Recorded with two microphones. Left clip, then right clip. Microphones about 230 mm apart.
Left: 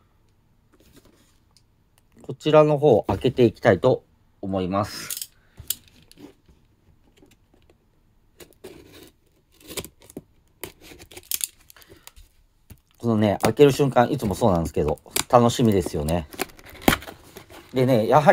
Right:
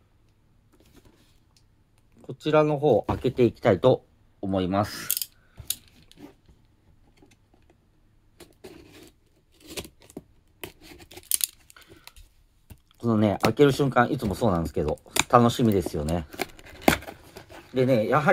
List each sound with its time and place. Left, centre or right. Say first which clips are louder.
2.2 s speech: left 5 dB; left
4.4 s speech: left 1 dB; centre
9.5 s tearing: left 3 dB; centre
11.6 s a sound: left 1 dB; centre
12.6 s speech: left 2 dB; centre
16.8 s a sound: left 1 dB; centre
17.7 s speech: left 4 dB; left